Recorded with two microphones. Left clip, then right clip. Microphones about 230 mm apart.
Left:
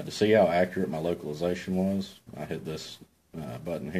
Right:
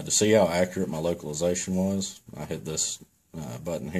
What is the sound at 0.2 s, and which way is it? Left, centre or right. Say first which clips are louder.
Speech: even; right.